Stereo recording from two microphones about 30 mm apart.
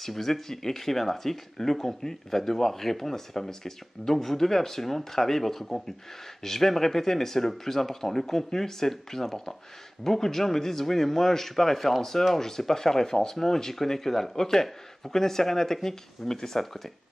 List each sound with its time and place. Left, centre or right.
0.0 s speech: centre